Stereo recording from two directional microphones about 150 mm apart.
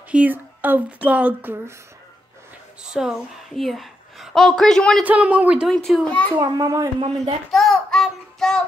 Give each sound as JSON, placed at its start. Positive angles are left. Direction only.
{"t": 0.1, "sound": "speech", "side_deg": -10}
{"t": 2.8, "sound": "a child's voice", "side_deg": -5}
{"t": 5.0, "sound": "a child's voice", "side_deg": -10}
{"t": 6.3, "sound": "a child's voice", "side_deg": -25}
{"t": 7.5, "sound": "child singing", "side_deg": 0}